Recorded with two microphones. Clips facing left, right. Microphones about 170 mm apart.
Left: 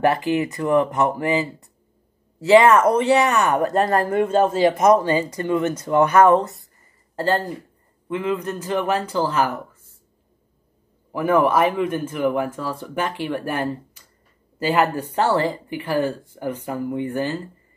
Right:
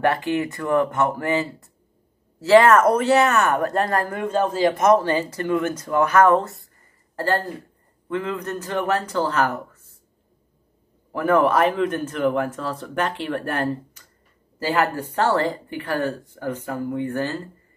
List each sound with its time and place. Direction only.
0.0 s speech: 20° left (ahead or behind)
2.6 s speech: 10° left (ahead or behind)
8.1 s speech: 15° left (ahead or behind)
11.1 s speech: 10° left (ahead or behind)